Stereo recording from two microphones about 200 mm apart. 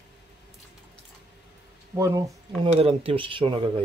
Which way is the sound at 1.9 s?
15° right (ahead or behind).